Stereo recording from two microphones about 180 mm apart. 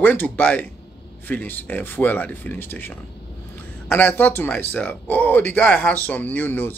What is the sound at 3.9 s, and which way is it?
Speech, 10° left (ahead or behind).